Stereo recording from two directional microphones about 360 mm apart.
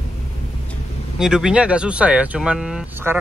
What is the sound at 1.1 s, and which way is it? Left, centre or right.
Speech, centre.